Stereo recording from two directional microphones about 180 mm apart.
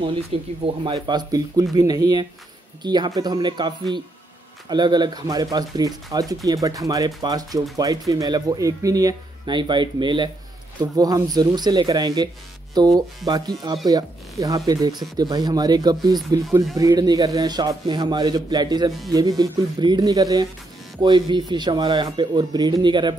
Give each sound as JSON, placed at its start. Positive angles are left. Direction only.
{"t": 0.3, "sound": "speech", "side_deg": -35}